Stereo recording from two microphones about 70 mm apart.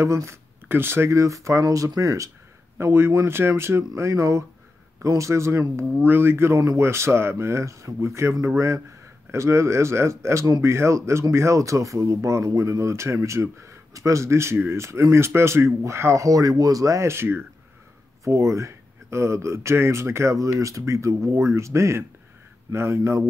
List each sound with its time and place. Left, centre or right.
0.0 s speech: right
0.7 s speech: right
1.1 s speech: right
2.8 s speech: right
16.3 s speech: right
18.2 s speech: right